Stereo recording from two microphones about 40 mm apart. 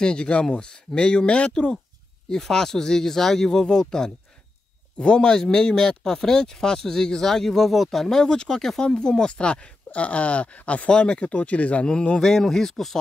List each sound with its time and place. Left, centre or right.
0.0 s speech: left
2.2 s speech: centre; by 10.9 s left
10.9 s speech: left
11.8 s speech: left
12.2 s speech: centre